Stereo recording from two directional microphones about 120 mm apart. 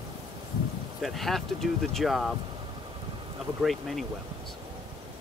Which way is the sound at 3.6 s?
Centre (ahead or behind).